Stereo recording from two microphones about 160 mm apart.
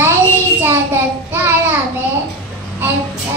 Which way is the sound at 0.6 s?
15° right (ahead or behind).